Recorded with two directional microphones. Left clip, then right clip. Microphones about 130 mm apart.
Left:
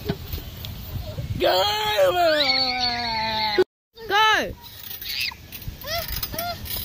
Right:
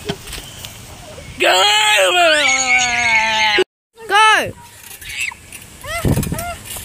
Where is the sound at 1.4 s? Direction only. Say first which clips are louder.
Right 8 dB; 25° left (ahead or behind).